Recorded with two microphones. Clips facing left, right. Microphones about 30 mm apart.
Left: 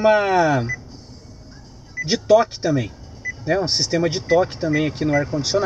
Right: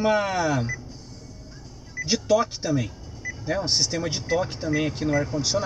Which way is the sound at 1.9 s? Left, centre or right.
Left.